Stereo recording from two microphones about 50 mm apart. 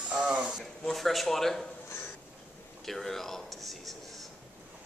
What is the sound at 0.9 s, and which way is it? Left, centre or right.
Speech, centre.